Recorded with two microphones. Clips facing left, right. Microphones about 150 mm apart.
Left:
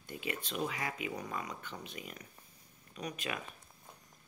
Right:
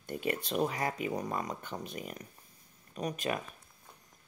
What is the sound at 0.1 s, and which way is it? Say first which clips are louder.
Speech: right 7 dB; 45° right (ahead or behind).